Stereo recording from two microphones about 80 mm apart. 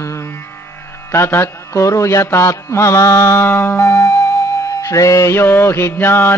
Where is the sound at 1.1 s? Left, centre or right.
Left.